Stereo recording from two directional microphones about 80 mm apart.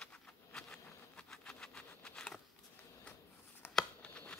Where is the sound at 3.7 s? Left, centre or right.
Centre.